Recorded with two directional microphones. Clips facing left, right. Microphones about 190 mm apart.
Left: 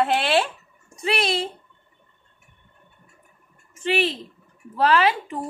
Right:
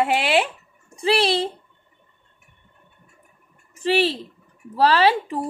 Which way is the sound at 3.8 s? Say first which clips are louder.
Right 3 dB; 35° right (ahead or behind).